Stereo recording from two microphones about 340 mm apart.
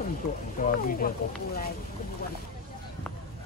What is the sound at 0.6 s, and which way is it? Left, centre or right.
Speech, left.